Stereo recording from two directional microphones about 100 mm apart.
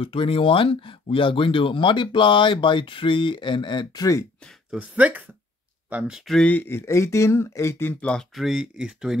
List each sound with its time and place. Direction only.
0.0 s speech: 65° left (ahead or behind); by 4.3 s 35° left (ahead or behind)
4.6 s speech: 15° right (ahead or behind)
6.2 s speech: 5° left (ahead or behind)
6.5 s speech: 20° left (ahead or behind)
8.0 s speech: 10° left (ahead or behind)
8.4 s speech: 5° right (ahead or behind)